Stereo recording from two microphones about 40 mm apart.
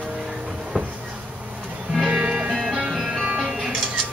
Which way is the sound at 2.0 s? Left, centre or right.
Centre.